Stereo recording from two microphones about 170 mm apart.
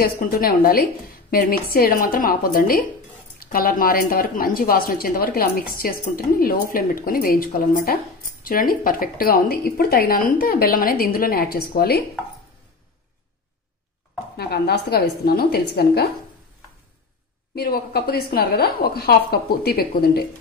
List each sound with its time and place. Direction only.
0.0 s speech: 60° left (ahead or behind)
14.3 s speech: 70° left (ahead or behind)
17.6 s speech: 65° left (ahead or behind)